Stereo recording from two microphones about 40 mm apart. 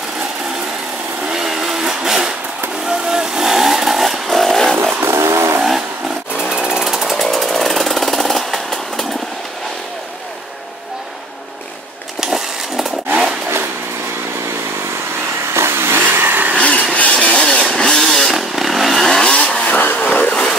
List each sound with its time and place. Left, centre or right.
1.3 s blender: centre
2.8 s vehicle: centre
5.0 s vehicle: right
5.6 s vehicle: centre
6.5 s jackhammer: centre
6.8 s jackhammer: centre
12.2 s chainsaw: centre
15.6 s vehicle: right
16.1 s vehicle: right
16.5 s vehicle: left
17.5 s vehicle: centre
18.3 s chainsaw: centre
19.2 s vehicle: left